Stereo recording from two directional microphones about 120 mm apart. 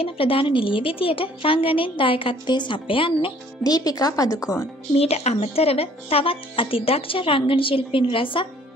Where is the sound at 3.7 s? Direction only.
30° left (ahead or behind).